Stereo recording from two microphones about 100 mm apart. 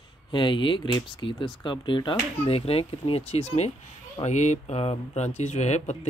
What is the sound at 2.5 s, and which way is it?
Speech, 75° left (ahead or behind).